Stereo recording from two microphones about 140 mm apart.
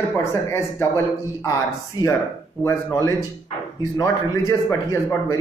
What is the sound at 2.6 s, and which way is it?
A man's voice, 20° left (ahead or behind).